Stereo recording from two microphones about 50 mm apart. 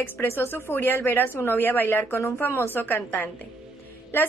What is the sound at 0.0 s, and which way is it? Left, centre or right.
A woman's voice, left.